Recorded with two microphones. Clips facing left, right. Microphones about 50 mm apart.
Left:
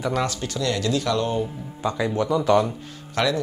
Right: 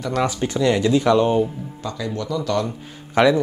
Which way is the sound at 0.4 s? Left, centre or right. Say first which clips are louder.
Right 7 dB; right.